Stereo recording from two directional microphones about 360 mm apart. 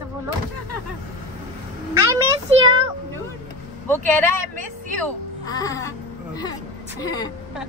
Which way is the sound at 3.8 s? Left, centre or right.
Centre.